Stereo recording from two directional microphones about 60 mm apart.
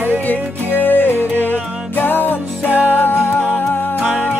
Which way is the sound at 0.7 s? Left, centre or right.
Left.